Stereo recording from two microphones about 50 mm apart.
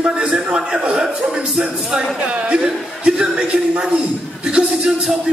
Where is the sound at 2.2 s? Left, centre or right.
Right.